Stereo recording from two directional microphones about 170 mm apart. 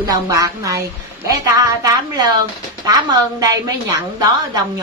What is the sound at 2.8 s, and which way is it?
A woman's voice, 20° right (ahead or behind).